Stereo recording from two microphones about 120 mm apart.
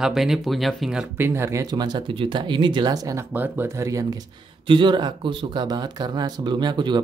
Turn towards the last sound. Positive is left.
turn(degrees=-40)  # may be behind; listen again after turning